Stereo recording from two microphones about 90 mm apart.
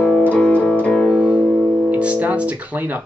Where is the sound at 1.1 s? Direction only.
10° right (ahead or behind).